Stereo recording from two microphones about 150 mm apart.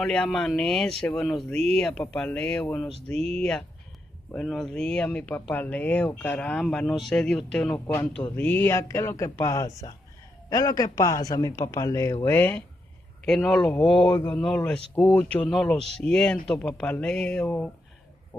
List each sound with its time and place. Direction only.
0.0 s a man's voice: 5° left (ahead or behind)
13.2 s speech: 5° left (ahead or behind)